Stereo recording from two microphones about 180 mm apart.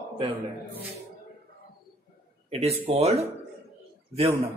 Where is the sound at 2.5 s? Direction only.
35° right (ahead or behind).